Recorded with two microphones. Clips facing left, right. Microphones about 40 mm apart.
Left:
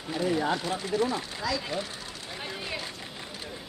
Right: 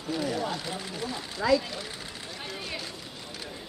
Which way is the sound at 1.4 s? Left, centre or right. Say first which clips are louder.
Right 8 dB; right.